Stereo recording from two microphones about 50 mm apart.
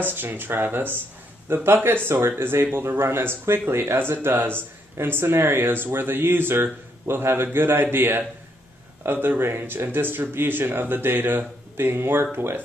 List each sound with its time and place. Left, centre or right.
0.0 s speech: right